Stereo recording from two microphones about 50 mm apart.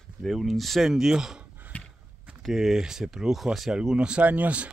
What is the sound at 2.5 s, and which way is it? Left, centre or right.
Speech, centre.